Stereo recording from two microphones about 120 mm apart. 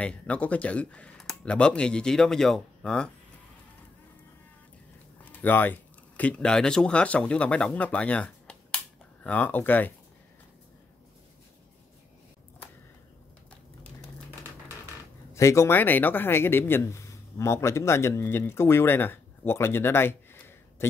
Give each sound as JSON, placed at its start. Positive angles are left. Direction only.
{"t": 0.0, "sound": "speech", "side_deg": 10}
{"t": 5.4, "sound": "speech", "side_deg": 15}
{"t": 15.3, "sound": "speech", "side_deg": 25}